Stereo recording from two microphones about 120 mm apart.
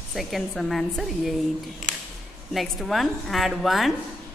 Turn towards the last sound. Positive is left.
turn(degrees=0)  # may be behind; listen again after turning